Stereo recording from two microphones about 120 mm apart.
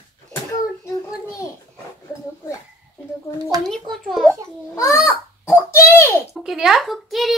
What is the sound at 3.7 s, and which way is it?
Speech, 5° left (ahead or behind).